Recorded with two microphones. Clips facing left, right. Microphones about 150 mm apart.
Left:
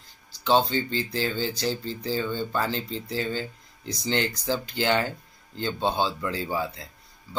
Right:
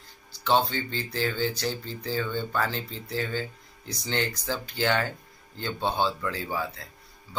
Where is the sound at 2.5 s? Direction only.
25° left (ahead or behind).